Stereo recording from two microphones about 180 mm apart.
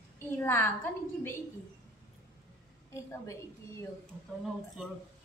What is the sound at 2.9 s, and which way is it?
Speech, 15° left (ahead or behind).